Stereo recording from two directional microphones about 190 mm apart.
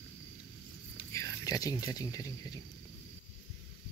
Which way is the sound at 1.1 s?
15° left (ahead or behind).